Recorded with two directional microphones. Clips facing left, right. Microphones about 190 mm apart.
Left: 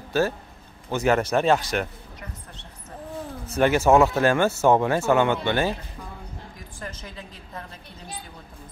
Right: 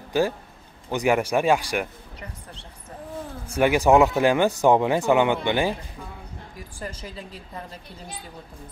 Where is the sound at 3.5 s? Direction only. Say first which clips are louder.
Even; 10° right (ahead or behind).